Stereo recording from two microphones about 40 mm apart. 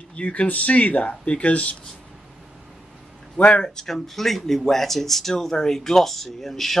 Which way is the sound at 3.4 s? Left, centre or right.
Left.